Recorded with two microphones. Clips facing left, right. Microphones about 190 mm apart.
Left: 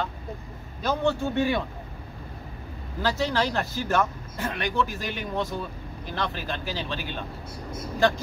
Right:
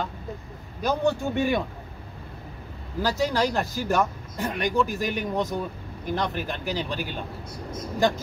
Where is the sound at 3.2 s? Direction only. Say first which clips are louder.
Right 3 dB; 10° right (ahead or behind).